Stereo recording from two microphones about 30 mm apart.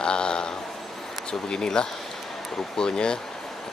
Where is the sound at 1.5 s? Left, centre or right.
Left.